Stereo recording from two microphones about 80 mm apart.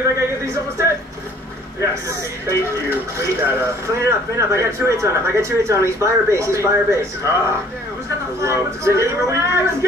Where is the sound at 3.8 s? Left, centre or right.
Right.